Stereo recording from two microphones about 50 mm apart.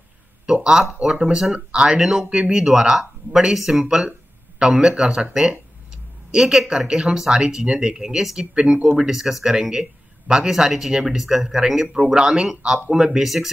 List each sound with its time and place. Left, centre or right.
0.5 s a sound: centre
1.0 s speech: centre
2.0 s speech: centre
2.2 s speech: right
2.5 s speech: centre
8.9 s speech: centre